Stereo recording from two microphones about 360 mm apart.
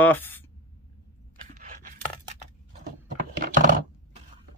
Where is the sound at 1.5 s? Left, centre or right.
Right.